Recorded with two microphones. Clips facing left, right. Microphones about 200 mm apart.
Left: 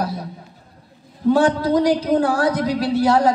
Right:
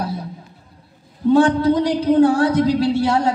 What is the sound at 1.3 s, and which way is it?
Speech, 25° right (ahead or behind).